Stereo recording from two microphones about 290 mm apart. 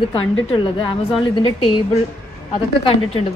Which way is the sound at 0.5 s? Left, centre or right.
Centre.